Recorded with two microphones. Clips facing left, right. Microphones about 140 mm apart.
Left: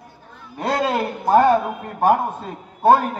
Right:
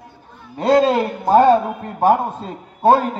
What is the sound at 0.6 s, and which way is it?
A man's voice, 30° right (ahead or behind).